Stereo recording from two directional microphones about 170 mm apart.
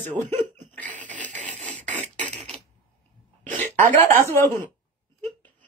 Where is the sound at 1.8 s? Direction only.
45° right (ahead or behind).